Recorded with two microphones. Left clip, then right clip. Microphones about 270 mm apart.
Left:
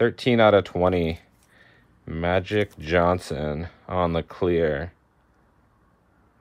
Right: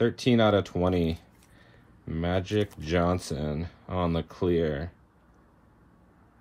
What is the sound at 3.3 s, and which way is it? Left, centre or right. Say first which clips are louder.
Speech: left 5 dB; centre.